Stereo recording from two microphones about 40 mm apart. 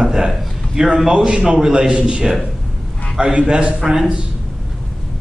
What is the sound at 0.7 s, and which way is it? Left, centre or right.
A man's voice, centre.